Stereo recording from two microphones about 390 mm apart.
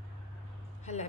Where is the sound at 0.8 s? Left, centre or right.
Centre.